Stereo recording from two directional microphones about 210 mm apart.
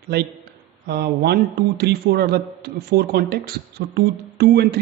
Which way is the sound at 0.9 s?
50° right (ahead or behind).